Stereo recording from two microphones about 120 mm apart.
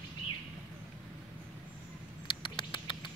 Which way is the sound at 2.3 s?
45° left (ahead or behind).